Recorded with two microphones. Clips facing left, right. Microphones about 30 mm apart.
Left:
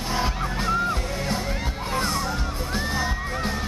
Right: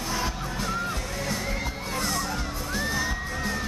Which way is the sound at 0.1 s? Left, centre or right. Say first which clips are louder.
Left 5 dB; left.